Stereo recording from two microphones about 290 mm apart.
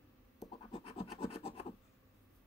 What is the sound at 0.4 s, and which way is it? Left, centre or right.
Scratch, centre.